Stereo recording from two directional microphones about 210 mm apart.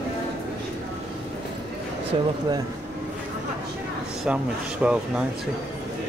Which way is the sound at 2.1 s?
25° right (ahead or behind).